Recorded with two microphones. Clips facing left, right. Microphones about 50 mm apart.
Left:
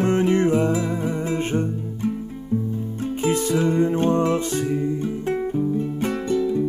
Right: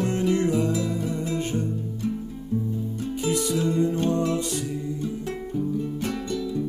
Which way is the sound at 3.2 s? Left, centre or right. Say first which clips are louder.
Left 4 dB; left.